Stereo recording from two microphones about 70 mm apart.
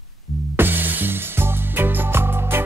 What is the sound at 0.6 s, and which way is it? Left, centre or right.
Music, right.